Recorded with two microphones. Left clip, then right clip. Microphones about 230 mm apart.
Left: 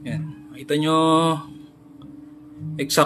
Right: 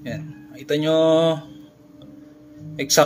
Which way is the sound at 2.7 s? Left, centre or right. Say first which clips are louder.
Right 3 dB; centre.